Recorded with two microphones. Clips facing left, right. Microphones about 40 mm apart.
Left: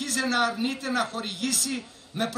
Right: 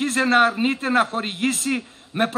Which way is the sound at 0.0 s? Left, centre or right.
Right.